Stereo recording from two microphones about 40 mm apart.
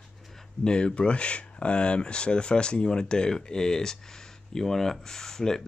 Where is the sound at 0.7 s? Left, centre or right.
Left.